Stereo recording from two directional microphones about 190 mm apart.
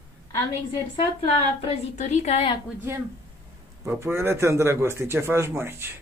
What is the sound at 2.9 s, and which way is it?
A man's voice, 15° right (ahead or behind).